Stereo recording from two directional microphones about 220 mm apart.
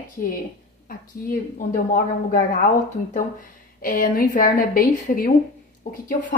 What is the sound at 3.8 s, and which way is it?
A woman's voice, 40° left (ahead or behind).